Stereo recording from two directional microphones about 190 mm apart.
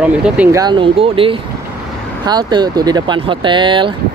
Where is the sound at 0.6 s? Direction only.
25° right (ahead or behind).